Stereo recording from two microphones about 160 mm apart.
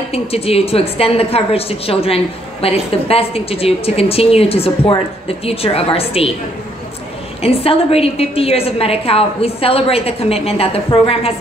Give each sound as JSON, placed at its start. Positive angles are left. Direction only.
{"t": 0.1, "sound": "a woman's voice", "side_deg": 40}
{"t": 7.4, "sound": "a woman's voice", "side_deg": 35}